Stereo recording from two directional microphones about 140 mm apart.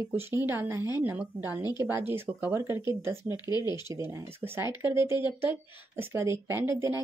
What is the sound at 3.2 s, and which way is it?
Speech, 30° left (ahead or behind).